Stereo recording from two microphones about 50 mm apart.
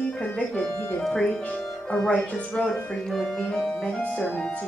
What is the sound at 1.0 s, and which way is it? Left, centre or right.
Speech, centre.